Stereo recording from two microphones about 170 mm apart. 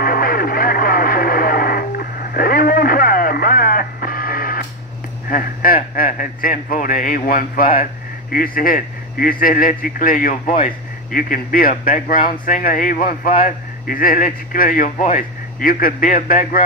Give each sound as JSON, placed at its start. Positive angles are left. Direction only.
{"t": 0.0, "sound": "radio", "side_deg": 60}
{"t": 5.3, "sound": "speech", "side_deg": 55}